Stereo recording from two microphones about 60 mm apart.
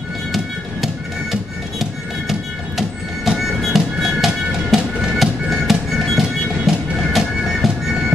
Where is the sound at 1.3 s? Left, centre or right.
Centre.